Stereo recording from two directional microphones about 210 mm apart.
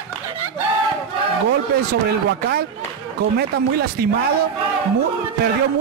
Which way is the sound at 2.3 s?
50° right (ahead or behind).